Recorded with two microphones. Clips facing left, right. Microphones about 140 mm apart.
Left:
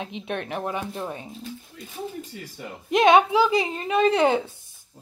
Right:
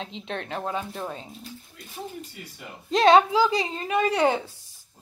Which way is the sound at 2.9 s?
15° left (ahead or behind).